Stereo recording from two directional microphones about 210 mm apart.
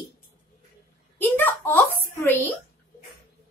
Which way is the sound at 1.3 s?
10° left (ahead or behind).